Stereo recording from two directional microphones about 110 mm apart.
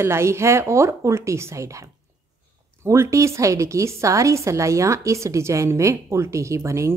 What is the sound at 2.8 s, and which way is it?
A woman's voice, 25° right (ahead or behind).